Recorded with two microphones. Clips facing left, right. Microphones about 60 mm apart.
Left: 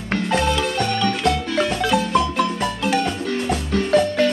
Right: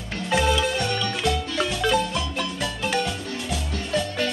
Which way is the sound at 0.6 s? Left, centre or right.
Left.